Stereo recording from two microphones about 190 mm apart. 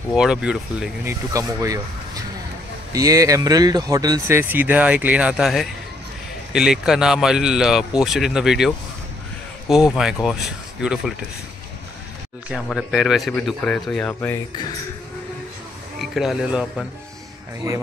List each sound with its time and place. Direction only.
0.1 s speech: 5° right (ahead or behind)
1.3 s speech: 15° right (ahead or behind)
2.9 s speech: 15° right (ahead or behind)
12.6 s speech: centre (ahead or behind)
16.0 s speech: centre (ahead or behind)